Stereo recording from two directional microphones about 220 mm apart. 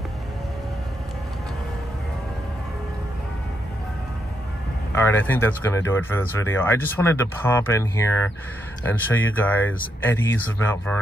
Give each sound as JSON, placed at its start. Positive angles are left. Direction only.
{"t": 5.0, "sound": "speech", "side_deg": 10}